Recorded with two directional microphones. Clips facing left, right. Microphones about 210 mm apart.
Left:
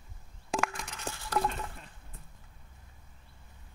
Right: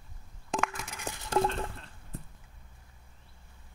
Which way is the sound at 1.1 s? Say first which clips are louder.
Right 4 dB; 20° right (ahead or behind).